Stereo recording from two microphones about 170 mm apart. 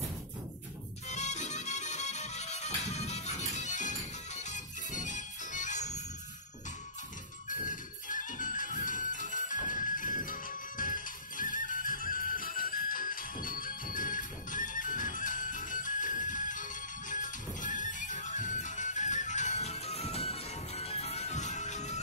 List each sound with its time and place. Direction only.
1.0 s music: 45° left (ahead or behind)
7.4 s music: 50° left (ahead or behind)